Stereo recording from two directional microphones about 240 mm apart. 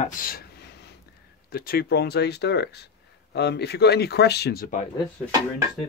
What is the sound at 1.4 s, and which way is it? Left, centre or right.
Speech, left.